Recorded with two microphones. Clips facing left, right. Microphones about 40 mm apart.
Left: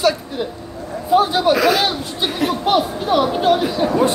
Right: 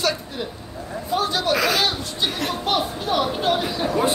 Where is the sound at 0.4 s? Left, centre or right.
Centre.